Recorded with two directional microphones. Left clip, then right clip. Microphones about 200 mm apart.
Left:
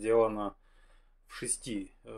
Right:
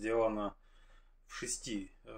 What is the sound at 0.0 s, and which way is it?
Speech, 45° left (ahead or behind).